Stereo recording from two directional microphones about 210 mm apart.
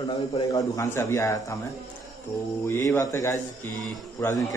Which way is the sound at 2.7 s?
10° left (ahead or behind).